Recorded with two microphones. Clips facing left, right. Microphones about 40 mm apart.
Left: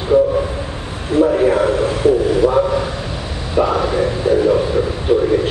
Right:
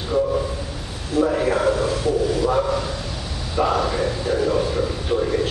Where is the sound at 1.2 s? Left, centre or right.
Centre.